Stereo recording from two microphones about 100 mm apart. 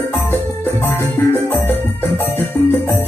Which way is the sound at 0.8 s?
25° left (ahead or behind).